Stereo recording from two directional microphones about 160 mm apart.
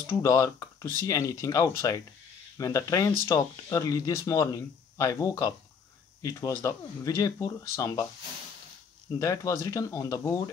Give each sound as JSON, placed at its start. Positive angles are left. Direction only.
{"t": 0.2, "sound": "speech", "side_deg": 20}
{"t": 9.2, "sound": "speech", "side_deg": 20}